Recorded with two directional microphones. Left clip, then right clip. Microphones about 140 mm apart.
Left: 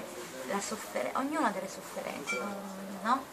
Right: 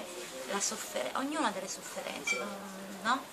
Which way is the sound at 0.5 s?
10° right (ahead or behind).